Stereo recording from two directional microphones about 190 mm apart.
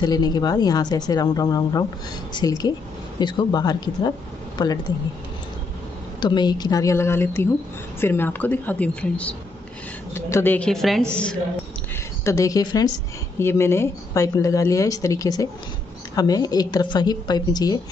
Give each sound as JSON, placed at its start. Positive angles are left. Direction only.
{"t": 0.0, "sound": "speech", "side_deg": 20}
{"t": 6.2, "sound": "a woman's voice", "side_deg": 20}
{"t": 12.3, "sound": "speech", "side_deg": 15}